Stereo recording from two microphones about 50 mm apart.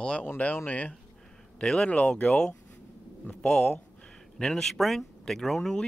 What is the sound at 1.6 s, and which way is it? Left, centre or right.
Speech, centre.